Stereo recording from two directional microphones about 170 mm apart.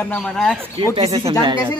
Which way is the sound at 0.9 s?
35° right (ahead or behind).